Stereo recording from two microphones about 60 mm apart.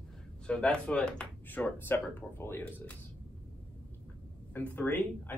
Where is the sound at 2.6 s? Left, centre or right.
Left.